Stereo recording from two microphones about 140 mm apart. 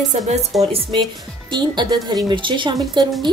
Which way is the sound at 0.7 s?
40° right (ahead or behind).